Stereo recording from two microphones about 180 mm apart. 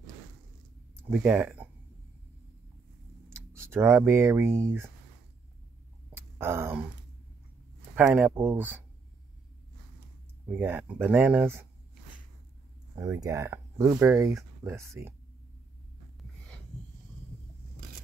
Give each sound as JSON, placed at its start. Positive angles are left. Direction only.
{"t": 1.1, "sound": "speech", "side_deg": -10}
{"t": 3.7, "sound": "speech", "side_deg": -15}
{"t": 6.1, "sound": "a sound", "side_deg": -10}
{"t": 7.9, "sound": "speech", "side_deg": -10}
{"t": 10.5, "sound": "speech", "side_deg": -10}
{"t": 12.9, "sound": "speech", "side_deg": -15}